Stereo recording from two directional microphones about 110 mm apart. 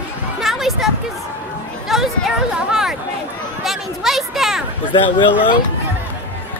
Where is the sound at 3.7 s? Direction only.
Centre (ahead or behind).